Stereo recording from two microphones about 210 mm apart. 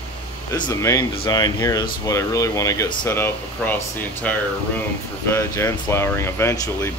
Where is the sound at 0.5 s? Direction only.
15° left (ahead or behind).